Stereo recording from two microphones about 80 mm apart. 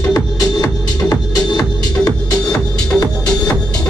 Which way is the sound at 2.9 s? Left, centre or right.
Centre.